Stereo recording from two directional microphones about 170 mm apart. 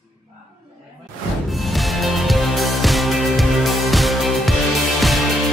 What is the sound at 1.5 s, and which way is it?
Music, centre (ahead or behind).